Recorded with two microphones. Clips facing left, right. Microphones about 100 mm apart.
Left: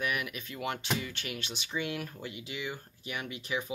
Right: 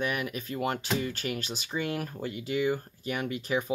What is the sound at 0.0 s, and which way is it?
Speech, 35° right (ahead or behind).